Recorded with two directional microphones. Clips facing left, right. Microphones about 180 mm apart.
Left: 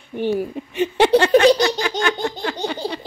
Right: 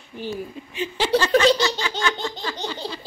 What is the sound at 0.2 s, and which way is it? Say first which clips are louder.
A child's voice: left 9 dB; 60° left (ahead or behind).